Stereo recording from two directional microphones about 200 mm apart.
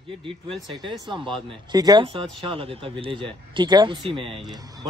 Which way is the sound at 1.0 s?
25° right (ahead or behind).